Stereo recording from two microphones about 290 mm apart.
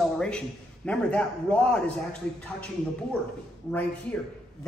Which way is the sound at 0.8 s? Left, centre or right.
Centre.